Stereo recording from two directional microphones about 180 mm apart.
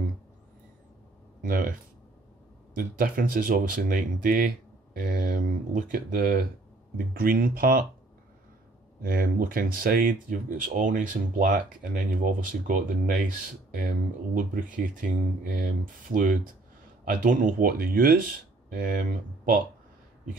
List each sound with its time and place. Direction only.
1.4 s speech: 50° right (ahead or behind)
9.0 s speech: 50° right (ahead or behind)